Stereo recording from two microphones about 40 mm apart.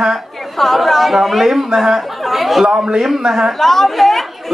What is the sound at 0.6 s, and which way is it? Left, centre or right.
A woman's voice, centre.